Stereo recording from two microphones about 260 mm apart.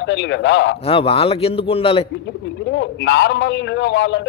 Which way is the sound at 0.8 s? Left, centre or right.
Left.